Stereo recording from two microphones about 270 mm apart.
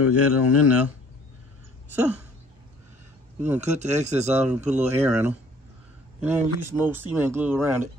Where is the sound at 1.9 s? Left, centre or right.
Centre.